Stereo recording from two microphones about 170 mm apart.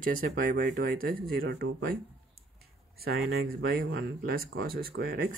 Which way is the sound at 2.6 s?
65° right (ahead or behind).